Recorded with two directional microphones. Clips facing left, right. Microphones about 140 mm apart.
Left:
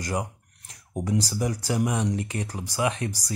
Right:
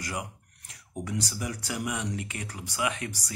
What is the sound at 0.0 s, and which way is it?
Speech, 40° left (ahead or behind).